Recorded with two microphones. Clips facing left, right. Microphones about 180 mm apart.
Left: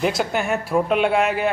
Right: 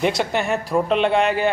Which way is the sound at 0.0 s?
Centre (ahead or behind).